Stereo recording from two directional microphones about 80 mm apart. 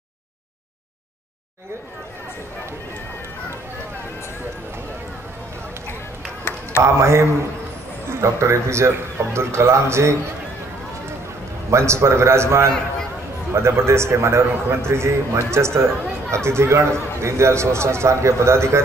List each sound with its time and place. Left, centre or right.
6.5 s run: left
6.8 s a man's voice: right
11.7 s a man's voice: right